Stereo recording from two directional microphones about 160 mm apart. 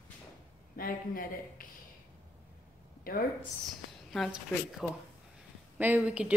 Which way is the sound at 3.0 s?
65° left (ahead or behind).